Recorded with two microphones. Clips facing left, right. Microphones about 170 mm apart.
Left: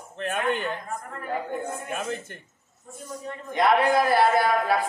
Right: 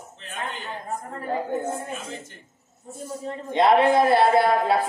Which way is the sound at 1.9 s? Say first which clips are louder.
Left 4 dB; 55° left (ahead or behind).